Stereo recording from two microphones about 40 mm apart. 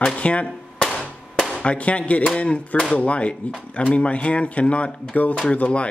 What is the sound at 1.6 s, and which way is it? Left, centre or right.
Speech, left.